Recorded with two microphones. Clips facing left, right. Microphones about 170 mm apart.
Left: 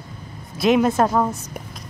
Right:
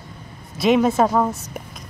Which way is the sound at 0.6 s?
Centre (ahead or behind).